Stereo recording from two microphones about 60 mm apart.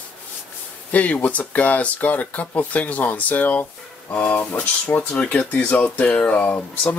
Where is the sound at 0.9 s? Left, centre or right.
Left.